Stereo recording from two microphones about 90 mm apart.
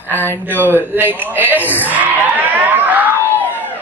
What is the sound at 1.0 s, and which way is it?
Music, 20° right (ahead or behind).